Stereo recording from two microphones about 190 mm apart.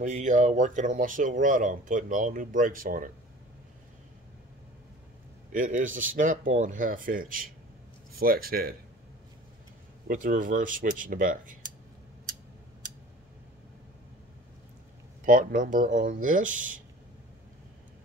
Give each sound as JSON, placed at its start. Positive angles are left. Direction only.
{"t": 0.0, "sound": "speech", "side_deg": -40}
{"t": 5.5, "sound": "speech", "side_deg": -45}
{"t": 10.0, "sound": "speech", "side_deg": -45}
{"t": 15.2, "sound": "speech", "side_deg": -45}